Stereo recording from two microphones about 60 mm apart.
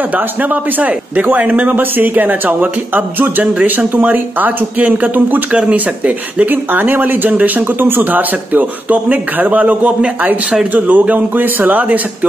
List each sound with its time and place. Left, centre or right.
0.0 s a man's voice: right